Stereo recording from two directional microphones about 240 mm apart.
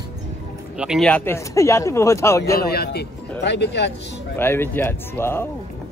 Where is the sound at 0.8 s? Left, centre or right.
Centre.